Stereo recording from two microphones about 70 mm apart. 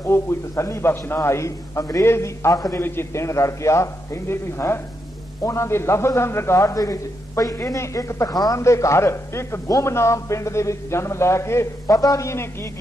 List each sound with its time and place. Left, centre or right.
0.0 s a man's voice: left
7.5 s a man's voice: left
8.3 s speech: left
8.5 s a man's voice: left
12.0 s a man's voice: left